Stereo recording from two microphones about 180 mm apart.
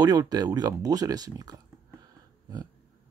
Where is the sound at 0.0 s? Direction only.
20° right (ahead or behind).